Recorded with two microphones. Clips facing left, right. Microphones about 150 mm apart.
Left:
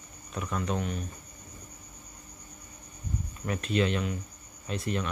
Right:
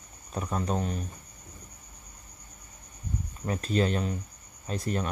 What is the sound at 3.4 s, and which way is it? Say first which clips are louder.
Speech: right 1 dB; 35° right (ahead or behind).